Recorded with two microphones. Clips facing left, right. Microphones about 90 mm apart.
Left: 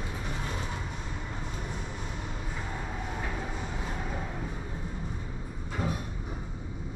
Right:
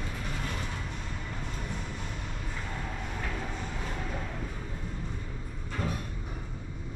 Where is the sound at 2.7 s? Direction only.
15° left (ahead or behind).